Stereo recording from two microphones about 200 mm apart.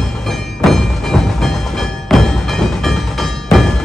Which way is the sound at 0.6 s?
Centre (ahead or behind).